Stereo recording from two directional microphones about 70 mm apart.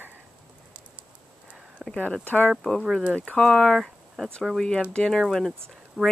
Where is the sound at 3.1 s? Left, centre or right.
Centre.